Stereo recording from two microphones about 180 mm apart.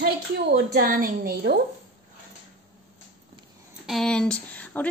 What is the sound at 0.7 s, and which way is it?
Speech, 50° right (ahead or behind).